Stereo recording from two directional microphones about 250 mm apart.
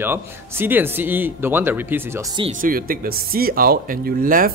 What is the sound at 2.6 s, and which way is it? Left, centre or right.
Speech, right.